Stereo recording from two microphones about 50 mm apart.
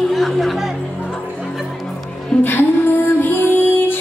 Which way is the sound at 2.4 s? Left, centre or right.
Left.